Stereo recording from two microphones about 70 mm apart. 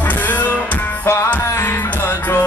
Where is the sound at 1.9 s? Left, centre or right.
Left.